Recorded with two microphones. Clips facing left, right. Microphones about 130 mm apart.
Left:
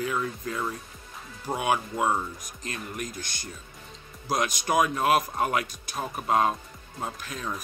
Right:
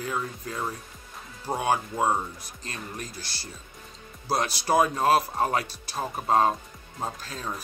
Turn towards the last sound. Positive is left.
turn(degrees=-30)  # may be behind; listen again after turning